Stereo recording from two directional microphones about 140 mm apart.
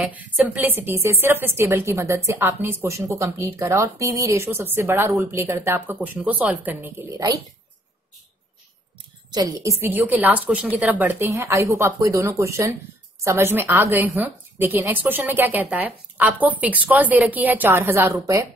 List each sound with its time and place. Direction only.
0.0 s a woman's voice: 10° right (ahead or behind)
7.0 s a woman's voice: 25° right (ahead or behind)
9.3 s a woman's voice: 25° right (ahead or behind)